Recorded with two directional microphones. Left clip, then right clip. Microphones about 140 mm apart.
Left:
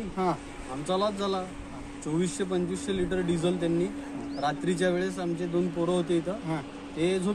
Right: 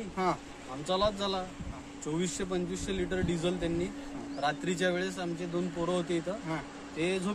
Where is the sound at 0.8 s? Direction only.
15° right (ahead or behind).